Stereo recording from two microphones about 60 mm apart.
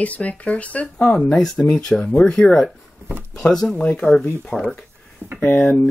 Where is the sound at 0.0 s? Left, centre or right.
Left; by 4.8 s centre.